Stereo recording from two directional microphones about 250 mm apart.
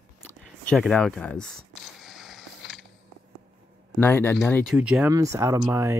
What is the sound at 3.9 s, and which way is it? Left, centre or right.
Speech, centre.